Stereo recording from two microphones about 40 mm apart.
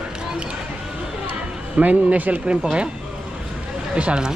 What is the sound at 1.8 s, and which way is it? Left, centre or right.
Speech, right.